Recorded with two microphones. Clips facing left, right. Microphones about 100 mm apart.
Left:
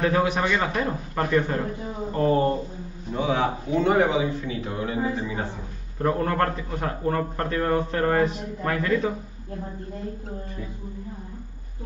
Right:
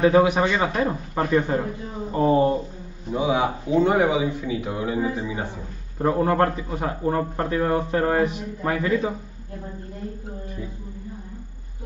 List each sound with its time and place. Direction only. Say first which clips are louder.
0.1 s a man's voice: right 4 dB; 15° right (ahead or behind)